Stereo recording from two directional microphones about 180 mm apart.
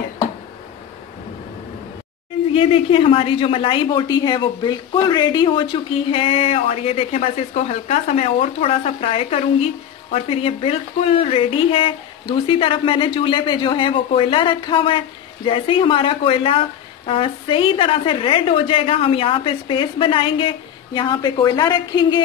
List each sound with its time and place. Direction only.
2.5 s a woman's voice: 30° left (ahead or behind)